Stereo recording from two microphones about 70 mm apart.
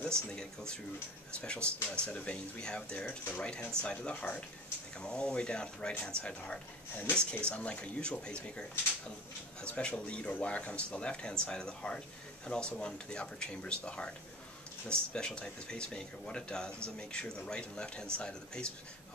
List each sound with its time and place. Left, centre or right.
0.3 s speech: centre